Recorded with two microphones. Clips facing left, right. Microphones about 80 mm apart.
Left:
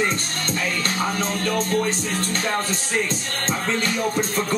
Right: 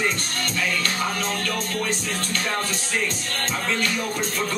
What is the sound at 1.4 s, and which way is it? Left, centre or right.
Music, left.